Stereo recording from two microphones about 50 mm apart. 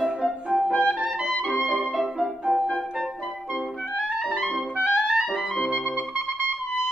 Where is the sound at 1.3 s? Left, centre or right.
Centre.